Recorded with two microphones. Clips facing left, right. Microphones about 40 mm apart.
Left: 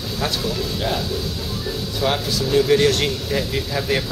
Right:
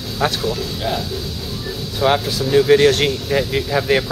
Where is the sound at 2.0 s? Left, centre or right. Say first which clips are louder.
Right 5 dB; centre.